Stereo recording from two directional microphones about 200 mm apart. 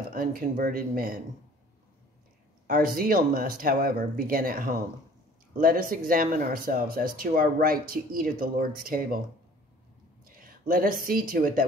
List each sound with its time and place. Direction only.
0.1 s speech: 45° right (ahead or behind)
2.6 s speech: 45° right (ahead or behind)
10.2 s a woman's voice: 45° right (ahead or behind)